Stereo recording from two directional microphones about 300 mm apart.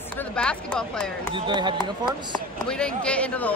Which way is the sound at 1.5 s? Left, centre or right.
Centre.